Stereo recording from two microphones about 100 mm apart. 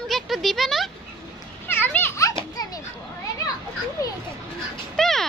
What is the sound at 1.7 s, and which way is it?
Children playing, 20° left (ahead or behind).